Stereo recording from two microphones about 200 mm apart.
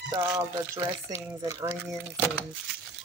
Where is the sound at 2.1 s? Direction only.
10° left (ahead or behind).